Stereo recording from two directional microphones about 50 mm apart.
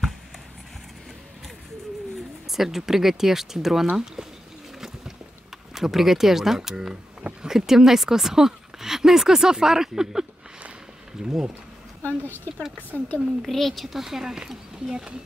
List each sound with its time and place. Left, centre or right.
2.4 s speech: centre
4.7 s boat: centre
5.8 s speech: centre
11.2 s speech: centre
12.0 s speech: left
13.4 s speech: centre